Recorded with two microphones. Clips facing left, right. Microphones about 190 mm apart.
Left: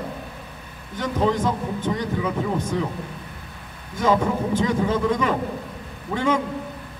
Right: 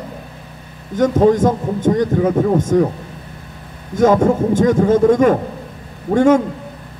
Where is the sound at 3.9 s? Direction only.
45° right (ahead or behind).